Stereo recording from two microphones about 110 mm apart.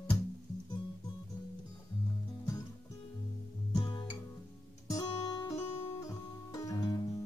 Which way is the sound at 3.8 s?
45° left (ahead or behind).